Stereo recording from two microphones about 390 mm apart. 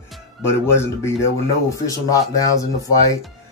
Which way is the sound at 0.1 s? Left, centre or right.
Centre.